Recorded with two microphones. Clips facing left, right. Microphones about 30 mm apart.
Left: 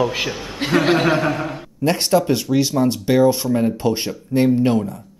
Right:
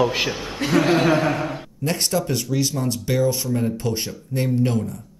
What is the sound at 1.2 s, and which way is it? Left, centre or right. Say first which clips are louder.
Speech: left 1 dB; centre.